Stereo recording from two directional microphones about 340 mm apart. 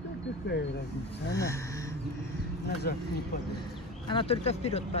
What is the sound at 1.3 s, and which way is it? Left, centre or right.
Speech, centre.